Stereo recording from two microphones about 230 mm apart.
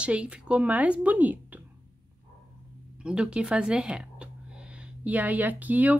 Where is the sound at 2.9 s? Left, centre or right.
Centre.